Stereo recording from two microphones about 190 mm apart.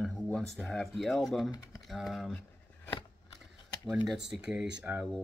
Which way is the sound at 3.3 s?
Centre (ahead or behind).